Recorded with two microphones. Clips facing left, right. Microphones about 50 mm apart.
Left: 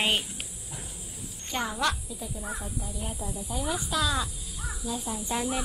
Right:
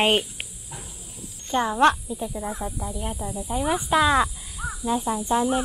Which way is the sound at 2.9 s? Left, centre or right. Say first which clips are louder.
Right 5 dB; right.